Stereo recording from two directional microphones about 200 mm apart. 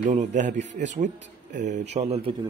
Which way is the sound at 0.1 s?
35° right (ahead or behind).